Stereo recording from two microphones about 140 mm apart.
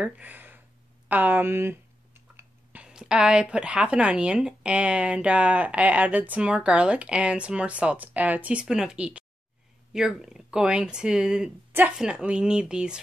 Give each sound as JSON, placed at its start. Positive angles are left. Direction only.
{"t": 0.0, "sound": "speech", "side_deg": -10}
{"t": 1.0, "sound": "clicking", "side_deg": -10}
{"t": 2.8, "sound": "speech", "side_deg": -5}